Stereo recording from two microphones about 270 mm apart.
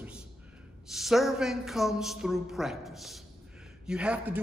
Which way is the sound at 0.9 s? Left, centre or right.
Centre.